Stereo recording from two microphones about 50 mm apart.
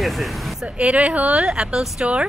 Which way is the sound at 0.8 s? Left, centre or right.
Right.